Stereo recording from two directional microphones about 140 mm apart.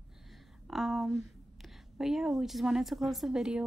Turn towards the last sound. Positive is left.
turn(degrees=-5)  # may be behind; listen again after turning